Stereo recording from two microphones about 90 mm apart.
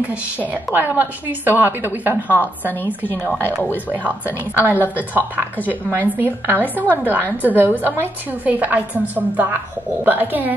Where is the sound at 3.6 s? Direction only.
20° right (ahead or behind).